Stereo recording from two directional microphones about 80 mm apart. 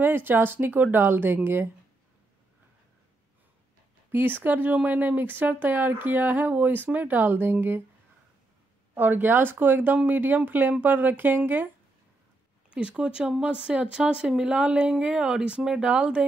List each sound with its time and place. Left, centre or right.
0.0 s speech: right
4.1 s speech: right
8.9 s speech: right
12.7 s speech: centre